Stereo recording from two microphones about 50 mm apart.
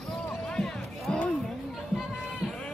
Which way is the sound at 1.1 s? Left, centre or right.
Centre.